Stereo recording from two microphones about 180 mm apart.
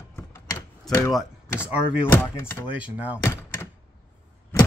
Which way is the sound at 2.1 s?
15° left (ahead or behind).